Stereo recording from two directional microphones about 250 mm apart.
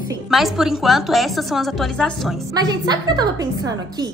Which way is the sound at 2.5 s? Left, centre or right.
Centre.